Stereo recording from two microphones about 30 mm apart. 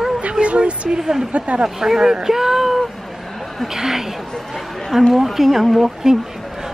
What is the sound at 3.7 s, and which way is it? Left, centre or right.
Speech, centre.